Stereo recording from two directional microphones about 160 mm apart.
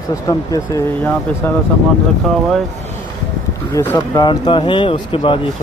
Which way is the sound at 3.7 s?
10° left (ahead or behind).